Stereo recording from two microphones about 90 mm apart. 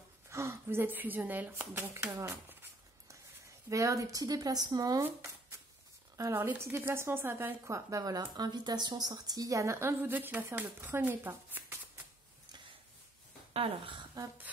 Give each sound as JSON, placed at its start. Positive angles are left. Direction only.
{"t": 0.3, "sound": "a woman's voice", "side_deg": -30}
{"t": 3.6, "sound": "speech", "side_deg": -35}
{"t": 6.3, "sound": "a woman's voice", "side_deg": -30}
{"t": 8.4, "sound": "a woman's voice", "side_deg": -50}
{"t": 13.5, "sound": "speech", "side_deg": -80}